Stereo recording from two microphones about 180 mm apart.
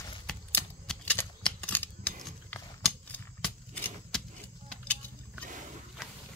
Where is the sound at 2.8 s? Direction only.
5° left (ahead or behind).